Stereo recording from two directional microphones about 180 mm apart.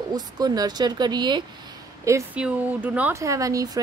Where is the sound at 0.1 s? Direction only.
20° right (ahead or behind).